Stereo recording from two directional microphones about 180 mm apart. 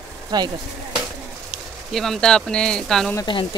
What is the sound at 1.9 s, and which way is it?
Speech, centre (ahead or behind).